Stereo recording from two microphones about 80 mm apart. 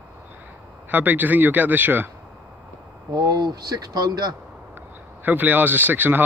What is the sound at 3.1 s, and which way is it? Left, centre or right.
Speech, right.